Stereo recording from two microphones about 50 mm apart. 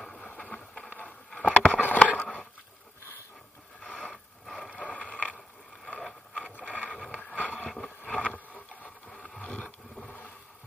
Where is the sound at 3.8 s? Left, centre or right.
Centre.